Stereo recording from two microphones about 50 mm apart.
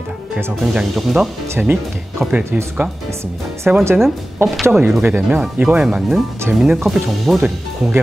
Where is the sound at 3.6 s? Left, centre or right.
Right.